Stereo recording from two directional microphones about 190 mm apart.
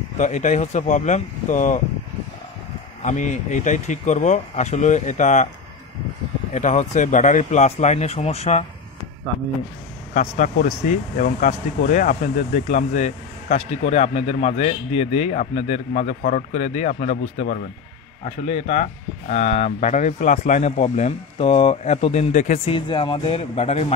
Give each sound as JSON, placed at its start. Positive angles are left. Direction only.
{"t": 0.2, "sound": "speech", "side_deg": 40}
{"t": 3.0, "sound": "speech", "side_deg": 40}
{"t": 6.5, "sound": "speech", "side_deg": 40}
{"t": 10.1, "sound": "speech", "side_deg": 45}
{"t": 22.8, "sound": "speech", "side_deg": 25}